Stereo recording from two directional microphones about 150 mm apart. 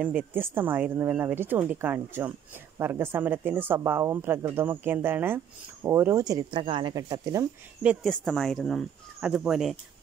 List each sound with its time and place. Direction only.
0.0 s speech: 15° right (ahead or behind)
7.8 s speech: 5° right (ahead or behind)
8.1 s speech: 5° left (ahead or behind)